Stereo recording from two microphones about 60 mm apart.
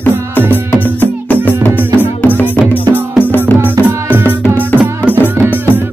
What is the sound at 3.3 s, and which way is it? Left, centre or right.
Music, left.